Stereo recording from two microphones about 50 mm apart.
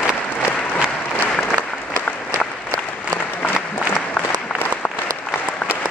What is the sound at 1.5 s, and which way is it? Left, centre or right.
Applause, left.